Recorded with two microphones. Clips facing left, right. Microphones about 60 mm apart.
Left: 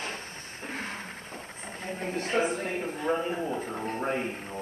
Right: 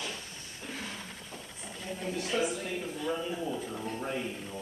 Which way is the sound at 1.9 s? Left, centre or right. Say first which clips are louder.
Left 3 dB; left.